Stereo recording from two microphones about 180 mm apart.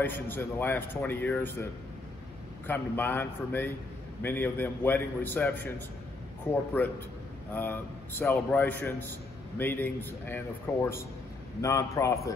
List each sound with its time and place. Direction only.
0.0 s a man's voice: 10° left (ahead or behind)